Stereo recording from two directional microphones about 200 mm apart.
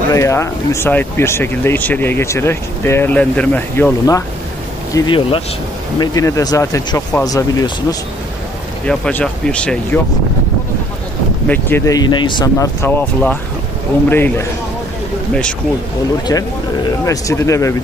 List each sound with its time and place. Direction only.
0.1 s speech: 15° left (ahead or behind)
8.8 s speech: 5° left (ahead or behind)
11.4 s speech: 10° left (ahead or behind)
12.8 s speech: 10° left (ahead or behind)
17.0 s speech: 15° left (ahead or behind)